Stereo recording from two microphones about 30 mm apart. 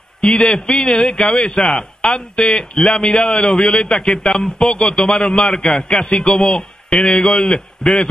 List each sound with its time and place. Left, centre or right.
0.2 s a man's voice: left
2.0 s a man's voice: left
3.9 s a man's voice: centre
5.7 s a sound: centre
5.9 s a man's voice: left